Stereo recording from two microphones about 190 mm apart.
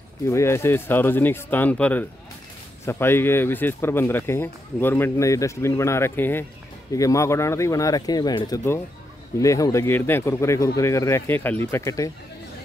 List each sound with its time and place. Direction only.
0.3 s speech: 15° left (ahead or behind)